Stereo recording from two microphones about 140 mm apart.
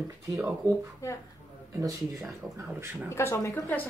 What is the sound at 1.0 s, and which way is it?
Speech, 20° left (ahead or behind).